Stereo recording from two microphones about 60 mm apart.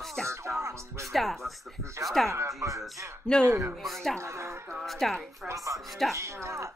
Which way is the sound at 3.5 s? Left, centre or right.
Right.